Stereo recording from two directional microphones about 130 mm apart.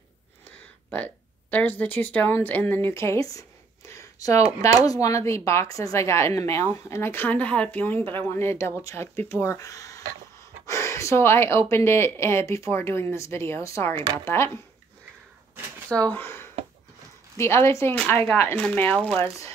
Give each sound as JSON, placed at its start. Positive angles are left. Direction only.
{"t": 0.9, "sound": "speech", "side_deg": 15}
{"t": 16.1, "sound": "speech", "side_deg": 15}